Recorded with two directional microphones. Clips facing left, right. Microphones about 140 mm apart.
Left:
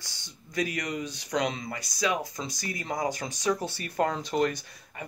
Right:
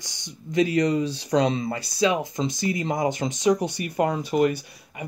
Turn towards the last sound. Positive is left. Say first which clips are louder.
# right 5 dB
turn(degrees=-10)  # may be behind; listen again after turning